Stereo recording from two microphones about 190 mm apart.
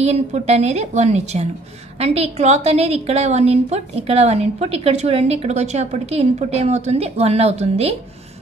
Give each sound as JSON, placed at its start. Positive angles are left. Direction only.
{"t": 0.0, "sound": "a woman's voice", "side_deg": -35}